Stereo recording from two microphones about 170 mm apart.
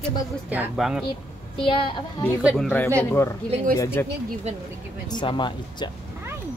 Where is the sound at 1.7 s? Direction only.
30° left (ahead or behind).